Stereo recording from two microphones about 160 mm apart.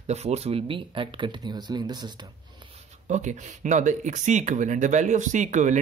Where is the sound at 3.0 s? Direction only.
50° right (ahead or behind).